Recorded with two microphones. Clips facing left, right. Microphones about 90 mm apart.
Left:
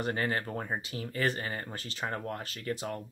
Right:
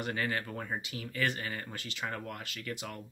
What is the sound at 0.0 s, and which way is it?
Speech, 35° left (ahead or behind).